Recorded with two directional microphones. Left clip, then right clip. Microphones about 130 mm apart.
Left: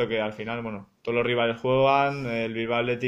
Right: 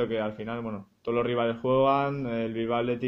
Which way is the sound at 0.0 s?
50° right (ahead or behind).